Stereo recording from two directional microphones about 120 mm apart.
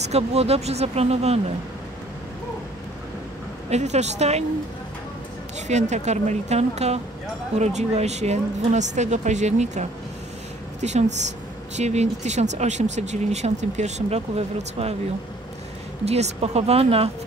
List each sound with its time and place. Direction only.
0.0 s speech: 60° right (ahead or behind)
3.7 s speech: 70° right (ahead or behind)
5.7 s speech: 75° right (ahead or behind); by 15.0 s 60° right (ahead or behind)
16.1 s speech: 60° right (ahead or behind)